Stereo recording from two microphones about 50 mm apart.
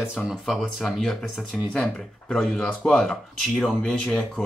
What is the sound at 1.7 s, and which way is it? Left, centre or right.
Speech, left.